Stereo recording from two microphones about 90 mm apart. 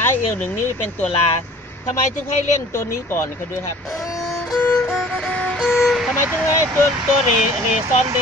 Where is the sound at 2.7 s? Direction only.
30° left (ahead or behind).